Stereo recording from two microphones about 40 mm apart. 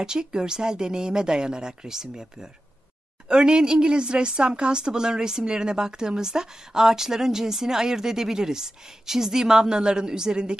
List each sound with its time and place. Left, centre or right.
0.0 s speech: centre
3.3 s a woman's voice: right